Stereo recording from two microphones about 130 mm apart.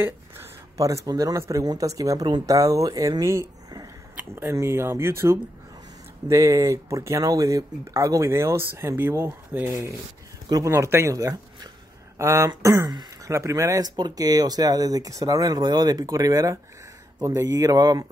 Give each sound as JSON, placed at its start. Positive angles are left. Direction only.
{"t": 0.0, "sound": "speech", "side_deg": -20}